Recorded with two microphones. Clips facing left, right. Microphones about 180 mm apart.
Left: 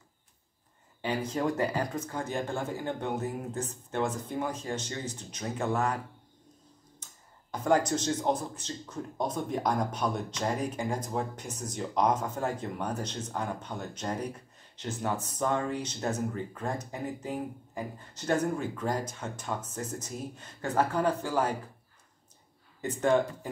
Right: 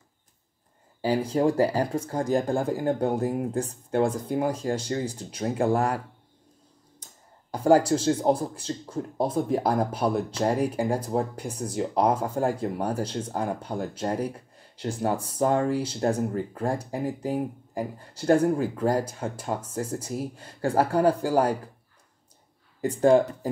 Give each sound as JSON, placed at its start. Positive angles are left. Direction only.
{"t": 1.0, "sound": "speech", "side_deg": -35}
{"t": 7.5, "sound": "speech", "side_deg": -30}
{"t": 22.8, "sound": "speech", "side_deg": -35}